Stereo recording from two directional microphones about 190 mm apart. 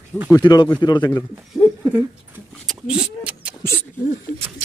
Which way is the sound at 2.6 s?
Centre (ahead or behind).